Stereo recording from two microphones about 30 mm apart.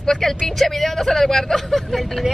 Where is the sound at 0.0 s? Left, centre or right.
Centre.